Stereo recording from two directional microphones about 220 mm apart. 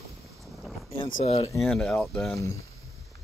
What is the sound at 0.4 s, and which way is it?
Boat, centre (ahead or behind).